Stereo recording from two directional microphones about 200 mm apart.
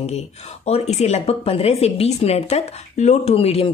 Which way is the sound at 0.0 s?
30° left (ahead or behind).